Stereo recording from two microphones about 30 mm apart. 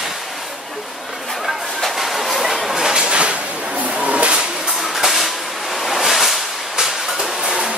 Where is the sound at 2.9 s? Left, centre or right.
Right.